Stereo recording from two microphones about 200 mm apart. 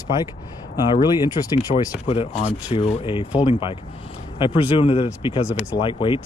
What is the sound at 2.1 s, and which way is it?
Speech, 35° left (ahead or behind).